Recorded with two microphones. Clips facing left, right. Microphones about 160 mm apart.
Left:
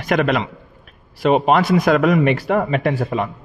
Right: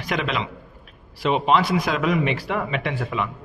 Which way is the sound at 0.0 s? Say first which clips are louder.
Left 7 dB; 50° left (ahead or behind).